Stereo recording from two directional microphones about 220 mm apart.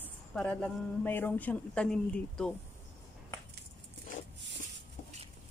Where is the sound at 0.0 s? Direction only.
5° left (ahead or behind).